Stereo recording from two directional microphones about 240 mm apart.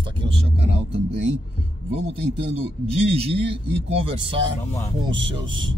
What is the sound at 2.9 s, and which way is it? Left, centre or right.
Speech, right.